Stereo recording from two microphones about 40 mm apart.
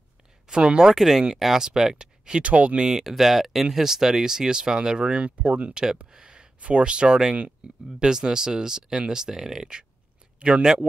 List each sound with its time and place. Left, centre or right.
0.5 s speech: right
0.9 s speech: centre
2.4 s speech: right
2.8 s speech: centre; by 5.8 s right
6.0 s speech: centre
8.0 s speech: centre
10.5 s speech: right